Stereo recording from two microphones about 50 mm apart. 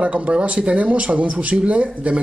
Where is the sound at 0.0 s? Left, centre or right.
Right.